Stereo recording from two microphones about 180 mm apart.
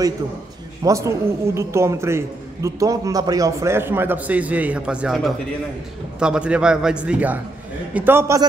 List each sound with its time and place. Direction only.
0.8 s a man's voice: 15° right (ahead or behind)